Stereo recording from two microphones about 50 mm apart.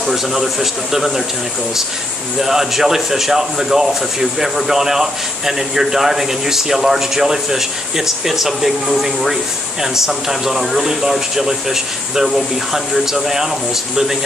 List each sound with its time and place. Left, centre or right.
0.0 s a man's voice: centre
2.3 s speech: centre